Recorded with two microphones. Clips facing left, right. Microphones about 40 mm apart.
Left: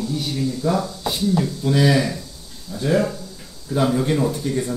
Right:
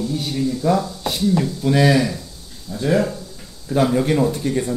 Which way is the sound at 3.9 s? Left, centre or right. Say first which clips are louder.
Right 2 dB; right.